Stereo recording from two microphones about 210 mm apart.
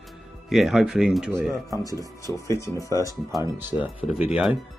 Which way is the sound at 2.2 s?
15° left (ahead or behind).